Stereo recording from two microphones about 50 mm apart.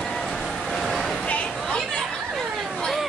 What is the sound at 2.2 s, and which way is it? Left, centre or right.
Chatter, centre.